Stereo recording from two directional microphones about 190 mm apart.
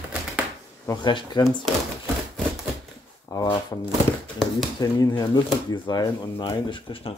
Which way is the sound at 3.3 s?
20° left (ahead or behind).